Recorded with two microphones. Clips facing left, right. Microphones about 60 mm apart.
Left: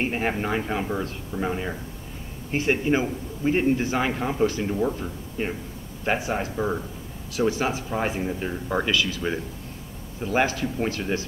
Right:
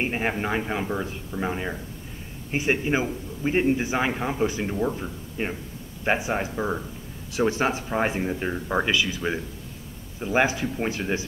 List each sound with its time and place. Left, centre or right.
0.0 s a man's voice: centre
6.0 s speech: centre
6.5 s a man's voice: centre
7.3 s a man's voice: right